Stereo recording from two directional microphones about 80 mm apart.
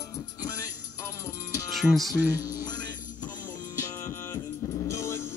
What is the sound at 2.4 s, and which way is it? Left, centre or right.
Music, left.